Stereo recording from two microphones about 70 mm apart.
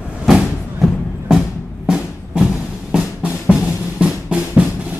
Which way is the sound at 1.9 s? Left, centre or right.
Centre.